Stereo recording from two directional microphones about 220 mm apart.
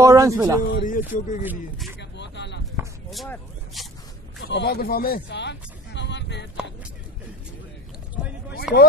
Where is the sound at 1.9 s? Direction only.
55° left (ahead or behind).